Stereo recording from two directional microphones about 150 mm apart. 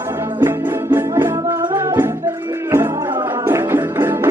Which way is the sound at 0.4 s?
15° right (ahead or behind).